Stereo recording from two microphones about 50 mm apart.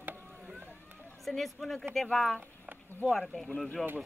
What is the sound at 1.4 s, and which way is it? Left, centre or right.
Speech, centre.